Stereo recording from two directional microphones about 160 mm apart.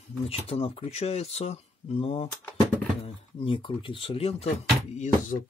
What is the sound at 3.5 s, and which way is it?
Speech, 35° left (ahead or behind).